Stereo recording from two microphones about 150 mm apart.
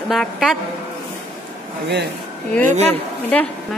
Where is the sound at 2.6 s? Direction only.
50° right (ahead or behind).